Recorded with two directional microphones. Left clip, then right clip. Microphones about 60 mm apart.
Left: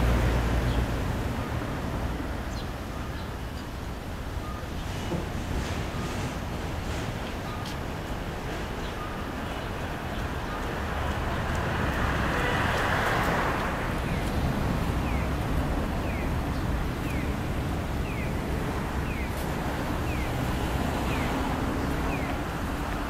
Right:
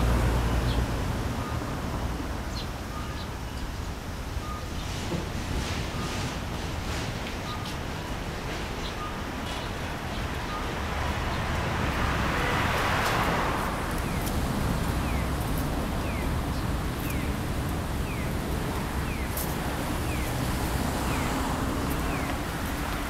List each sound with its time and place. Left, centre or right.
11.8 s vehicle: right
13.2 s vehicle: centre